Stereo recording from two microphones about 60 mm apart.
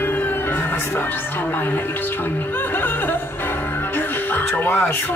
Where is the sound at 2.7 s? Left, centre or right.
Left.